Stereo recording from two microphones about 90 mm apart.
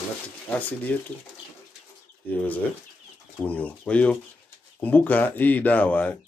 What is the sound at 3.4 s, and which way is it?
Speech, 15° left (ahead or behind).